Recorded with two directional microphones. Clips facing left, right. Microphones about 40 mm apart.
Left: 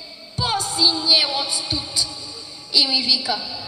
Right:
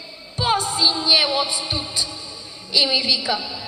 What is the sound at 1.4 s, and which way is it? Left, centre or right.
A woman's voice, right.